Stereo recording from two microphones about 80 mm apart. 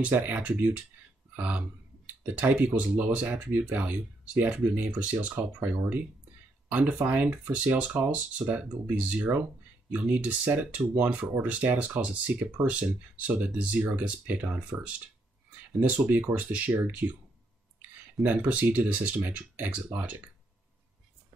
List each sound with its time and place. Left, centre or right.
0.0 s speech: right
1.3 s a sound: centre
2.2 s speech: centre
18.2 s speech: right